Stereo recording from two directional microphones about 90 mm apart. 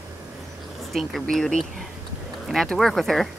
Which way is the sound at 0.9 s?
Centre (ahead or behind).